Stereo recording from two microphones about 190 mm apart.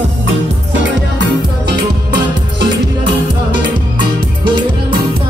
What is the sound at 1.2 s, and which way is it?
Music, 65° right (ahead or behind).